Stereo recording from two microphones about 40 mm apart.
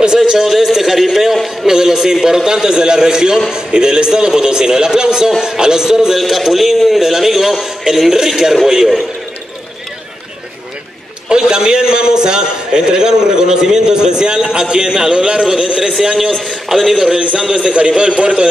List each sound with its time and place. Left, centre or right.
0.3 s a man's voice: centre
1.7 s a man's voice: centre
6.1 s a man's voice: centre
11.2 s a man's voice: centre
16.3 s a man's voice: centre
16.6 s a man's voice: centre
17.6 s a man's voice: right